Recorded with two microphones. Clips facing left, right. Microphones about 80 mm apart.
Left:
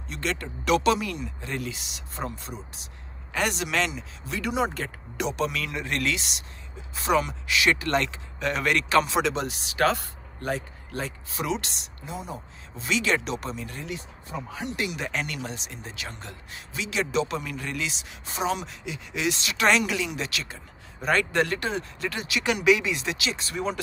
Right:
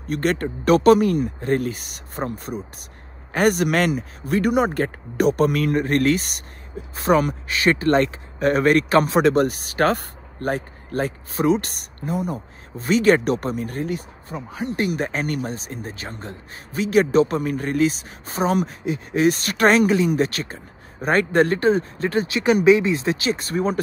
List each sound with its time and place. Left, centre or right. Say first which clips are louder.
0.1 s speech: right 9 dB; right
14.3 s speech: right 4 dB; right
14.8 s speech: right 7 dB; right